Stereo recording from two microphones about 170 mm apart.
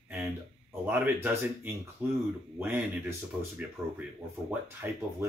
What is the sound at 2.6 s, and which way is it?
Speech, 15° right (ahead or behind).